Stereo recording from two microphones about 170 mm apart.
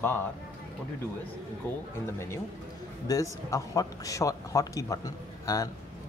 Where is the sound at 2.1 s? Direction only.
15° left (ahead or behind).